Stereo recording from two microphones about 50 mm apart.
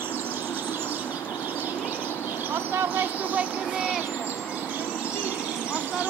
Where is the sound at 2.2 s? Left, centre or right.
Right.